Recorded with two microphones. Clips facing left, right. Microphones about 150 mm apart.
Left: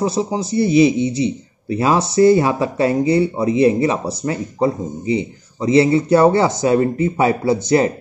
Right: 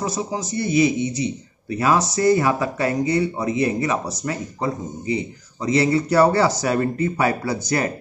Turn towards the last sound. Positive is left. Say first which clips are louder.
# left 8 dB
turn(degrees=25)  # may be behind; listen again after turning